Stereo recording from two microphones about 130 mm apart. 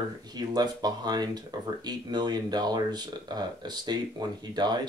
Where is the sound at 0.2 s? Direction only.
30° right (ahead or behind).